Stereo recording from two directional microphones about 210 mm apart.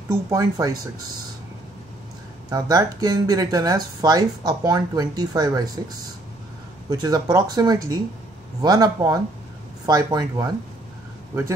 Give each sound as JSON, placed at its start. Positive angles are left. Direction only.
{"t": 0.1, "sound": "speech", "side_deg": -15}
{"t": 2.5, "sound": "speech", "side_deg": -15}
{"t": 6.9, "sound": "speech", "side_deg": -20}